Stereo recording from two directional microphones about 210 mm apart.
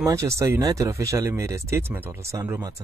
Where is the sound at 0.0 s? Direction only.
15° right (ahead or behind).